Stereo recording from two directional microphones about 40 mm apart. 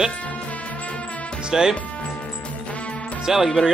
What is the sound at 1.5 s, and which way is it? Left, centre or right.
Speech, centre.